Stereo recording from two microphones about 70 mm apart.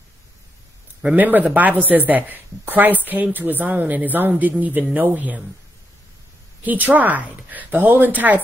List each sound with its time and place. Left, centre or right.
1.0 s speech: right
6.6 s speech: right